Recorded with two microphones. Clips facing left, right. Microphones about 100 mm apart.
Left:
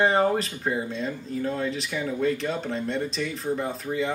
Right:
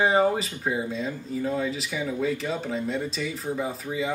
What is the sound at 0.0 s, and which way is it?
Speech, centre (ahead or behind).